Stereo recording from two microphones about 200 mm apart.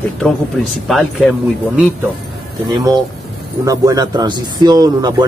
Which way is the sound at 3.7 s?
20° right (ahead or behind).